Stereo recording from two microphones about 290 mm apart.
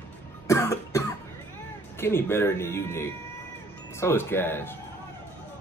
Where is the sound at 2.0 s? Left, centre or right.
Centre.